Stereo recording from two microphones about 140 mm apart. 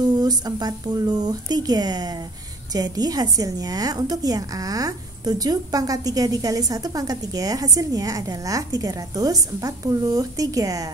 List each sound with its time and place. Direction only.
0.2 s a woman's voice: 30° right (ahead or behind)